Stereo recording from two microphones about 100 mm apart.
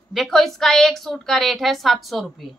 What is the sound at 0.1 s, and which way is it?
A woman's voice, centre (ahead or behind).